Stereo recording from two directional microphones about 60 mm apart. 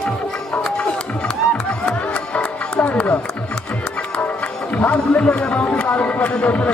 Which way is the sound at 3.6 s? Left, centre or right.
Left.